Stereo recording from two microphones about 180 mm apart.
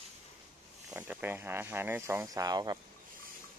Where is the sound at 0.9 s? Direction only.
10° right (ahead or behind).